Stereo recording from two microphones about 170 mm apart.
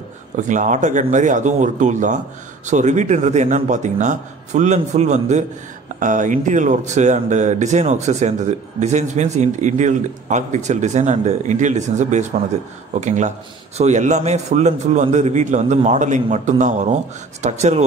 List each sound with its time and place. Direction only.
0.4 s speech: 45° right (ahead or behind)